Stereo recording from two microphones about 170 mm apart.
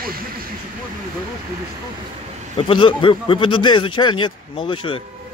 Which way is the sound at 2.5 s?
30° left (ahead or behind).